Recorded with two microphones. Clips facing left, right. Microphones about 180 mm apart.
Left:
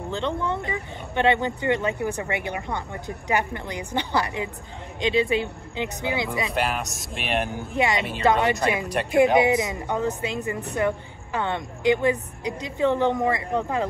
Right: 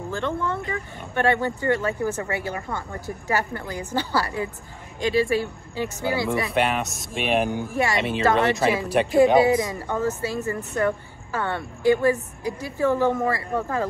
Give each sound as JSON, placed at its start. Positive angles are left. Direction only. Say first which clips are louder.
{"t": 0.1, "sound": "speech", "louder": "even", "side_deg": 20}
{"t": 6.5, "sound": "speech", "louder": "right 3 dB", "side_deg": 0}
{"t": 9.4, "sound": "speech", "louder": "right 2 dB", "side_deg": 20}